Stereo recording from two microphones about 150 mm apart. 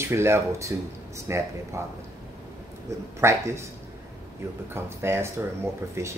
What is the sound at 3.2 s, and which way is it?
Speech, 20° right (ahead or behind).